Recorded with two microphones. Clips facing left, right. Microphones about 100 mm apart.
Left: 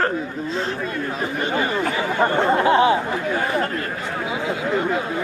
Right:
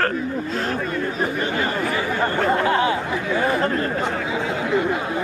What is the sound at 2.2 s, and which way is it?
Speech, 20° left (ahead or behind).